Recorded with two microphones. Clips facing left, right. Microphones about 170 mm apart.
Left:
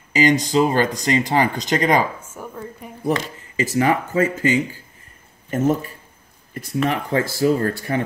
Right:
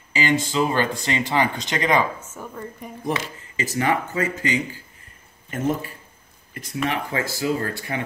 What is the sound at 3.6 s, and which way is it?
Speech, 40° left (ahead or behind).